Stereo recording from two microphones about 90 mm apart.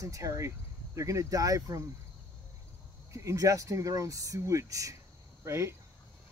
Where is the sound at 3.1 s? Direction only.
35° right (ahead or behind).